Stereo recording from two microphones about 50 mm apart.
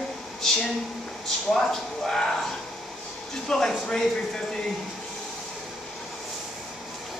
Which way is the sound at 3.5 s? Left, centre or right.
Centre.